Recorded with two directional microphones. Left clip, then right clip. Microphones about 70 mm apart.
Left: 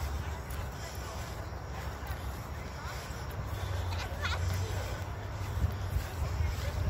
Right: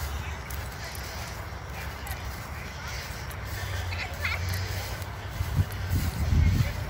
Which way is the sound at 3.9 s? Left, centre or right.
Left.